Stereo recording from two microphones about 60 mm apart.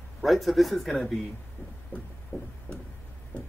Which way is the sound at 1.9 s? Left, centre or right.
Left.